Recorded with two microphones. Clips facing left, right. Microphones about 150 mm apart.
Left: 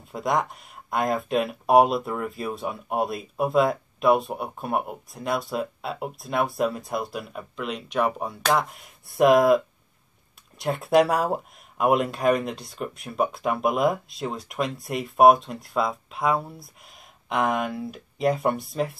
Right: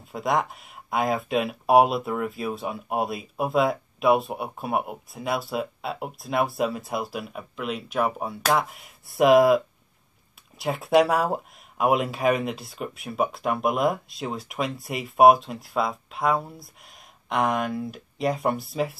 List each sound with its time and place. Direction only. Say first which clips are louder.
0.1 s speech: even; centre (ahead or behind)
10.6 s speech: even; centre (ahead or behind)